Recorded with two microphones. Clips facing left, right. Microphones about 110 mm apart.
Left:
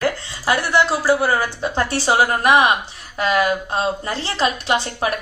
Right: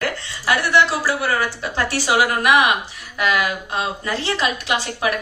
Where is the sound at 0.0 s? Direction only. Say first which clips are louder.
Left 3 dB; 35° left (ahead or behind).